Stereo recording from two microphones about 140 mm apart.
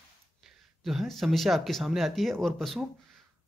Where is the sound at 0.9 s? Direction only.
Centre (ahead or behind).